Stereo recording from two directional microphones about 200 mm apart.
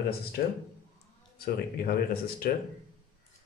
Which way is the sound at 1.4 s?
50° left (ahead or behind).